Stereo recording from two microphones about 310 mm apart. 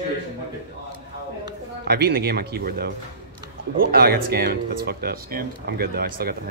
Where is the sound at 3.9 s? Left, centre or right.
Right.